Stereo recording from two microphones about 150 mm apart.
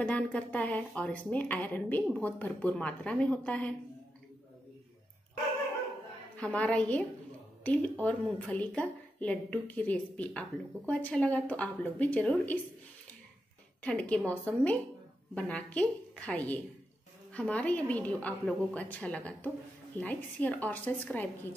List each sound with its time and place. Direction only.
0.0 s a woman's voice: 10° left (ahead or behind)
6.3 s a woman's voice: 10° left (ahead or behind)
13.8 s a woman's voice: 10° left (ahead or behind)